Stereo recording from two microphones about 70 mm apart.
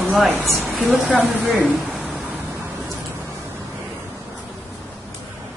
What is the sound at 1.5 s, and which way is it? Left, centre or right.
Speech, right.